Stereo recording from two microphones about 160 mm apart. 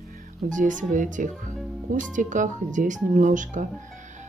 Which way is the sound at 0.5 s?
55° right (ahead or behind).